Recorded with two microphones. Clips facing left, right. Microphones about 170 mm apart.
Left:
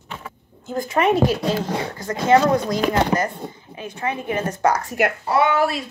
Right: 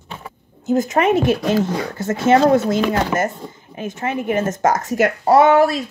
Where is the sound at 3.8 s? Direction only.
45° right (ahead or behind).